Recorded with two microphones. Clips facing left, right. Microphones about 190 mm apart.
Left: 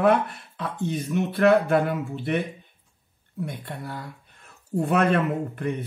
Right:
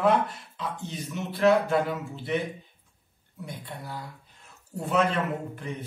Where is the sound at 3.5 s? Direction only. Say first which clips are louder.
Left 4 dB; 60° left (ahead or behind).